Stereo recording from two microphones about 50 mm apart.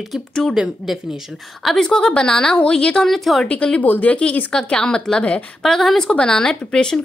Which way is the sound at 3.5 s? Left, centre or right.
Left.